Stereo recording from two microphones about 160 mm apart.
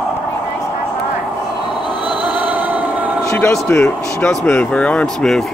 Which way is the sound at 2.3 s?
10° right (ahead or behind).